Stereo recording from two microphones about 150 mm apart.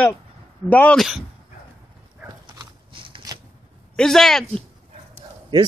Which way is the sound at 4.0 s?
Centre (ahead or behind).